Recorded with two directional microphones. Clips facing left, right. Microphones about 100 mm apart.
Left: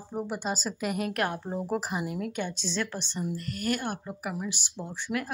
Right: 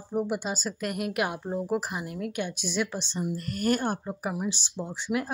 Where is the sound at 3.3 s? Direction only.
40° right (ahead or behind).